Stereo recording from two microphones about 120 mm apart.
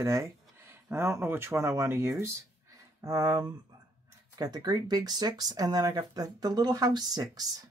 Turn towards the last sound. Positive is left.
turn(degrees=-35)  # may be behind; listen again after turning